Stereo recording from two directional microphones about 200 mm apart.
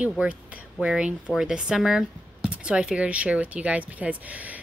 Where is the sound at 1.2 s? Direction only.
5° right (ahead or behind).